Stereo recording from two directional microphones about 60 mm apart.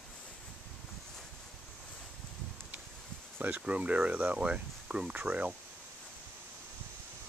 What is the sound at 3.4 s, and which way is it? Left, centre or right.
Speech, right.